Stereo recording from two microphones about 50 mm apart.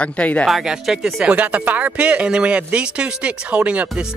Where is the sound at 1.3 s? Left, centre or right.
Right.